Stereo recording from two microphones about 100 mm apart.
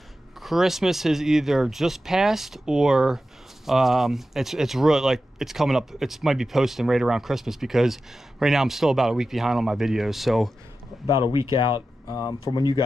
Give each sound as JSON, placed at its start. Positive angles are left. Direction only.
{"t": 0.4, "sound": "speech", "side_deg": -5}
{"t": 11.6, "sound": "speech", "side_deg": 45}